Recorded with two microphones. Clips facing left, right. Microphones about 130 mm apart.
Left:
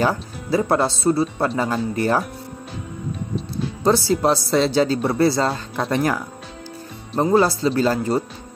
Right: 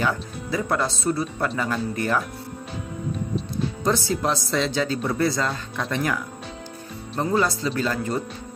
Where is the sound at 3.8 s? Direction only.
35° left (ahead or behind).